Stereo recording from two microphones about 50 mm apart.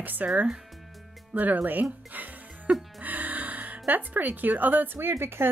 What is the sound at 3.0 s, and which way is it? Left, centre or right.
Speech, right.